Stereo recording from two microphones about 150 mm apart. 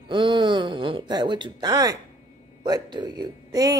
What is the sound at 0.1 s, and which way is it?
A woman's voice, 30° right (ahead or behind).